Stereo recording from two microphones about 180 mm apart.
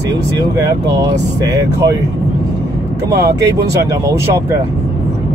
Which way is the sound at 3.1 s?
65° right (ahead or behind).